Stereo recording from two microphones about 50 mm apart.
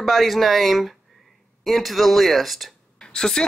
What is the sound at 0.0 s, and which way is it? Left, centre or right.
Speech, centre.